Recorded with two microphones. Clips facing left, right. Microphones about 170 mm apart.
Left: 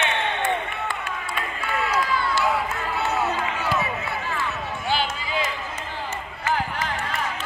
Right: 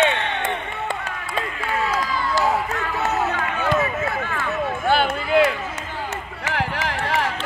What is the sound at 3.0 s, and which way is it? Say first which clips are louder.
Run: right 1 dB; 55° right (ahead or behind).